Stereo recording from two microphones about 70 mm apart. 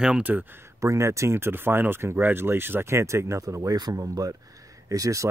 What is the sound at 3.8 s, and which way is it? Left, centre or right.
Speech, right.